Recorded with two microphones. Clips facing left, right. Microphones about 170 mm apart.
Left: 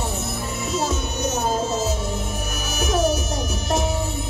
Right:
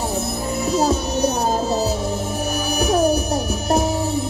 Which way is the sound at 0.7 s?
35° right (ahead or behind).